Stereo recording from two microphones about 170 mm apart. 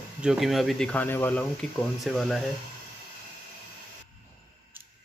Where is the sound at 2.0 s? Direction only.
Centre (ahead or behind).